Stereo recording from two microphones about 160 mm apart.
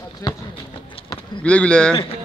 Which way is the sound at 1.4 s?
5° left (ahead or behind).